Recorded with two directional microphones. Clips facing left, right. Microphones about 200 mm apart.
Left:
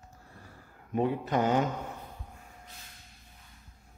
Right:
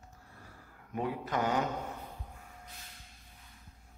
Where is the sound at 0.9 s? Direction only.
25° left (ahead or behind).